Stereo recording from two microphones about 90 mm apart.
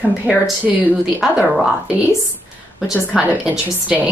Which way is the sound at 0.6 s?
15° right (ahead or behind).